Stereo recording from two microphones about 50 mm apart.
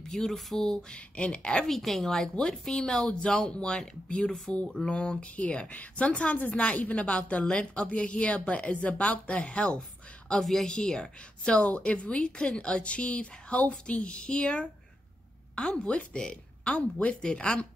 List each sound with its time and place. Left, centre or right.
0.1 s speech: centre
0.9 s a woman's voice: left
1.7 s speech: centre
4.5 s a woman's voice: left
10.4 s a woman's voice: centre
10.7 s a woman's voice: centre
15.9 s a woman's voice: left